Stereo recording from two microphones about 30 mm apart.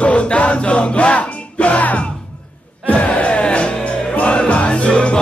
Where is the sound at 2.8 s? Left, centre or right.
Left.